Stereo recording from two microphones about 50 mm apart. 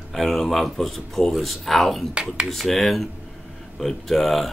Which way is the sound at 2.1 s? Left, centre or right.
Right.